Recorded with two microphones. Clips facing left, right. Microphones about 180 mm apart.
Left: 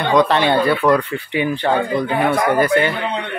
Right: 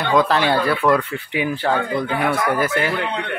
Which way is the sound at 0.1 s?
5° right (ahead or behind).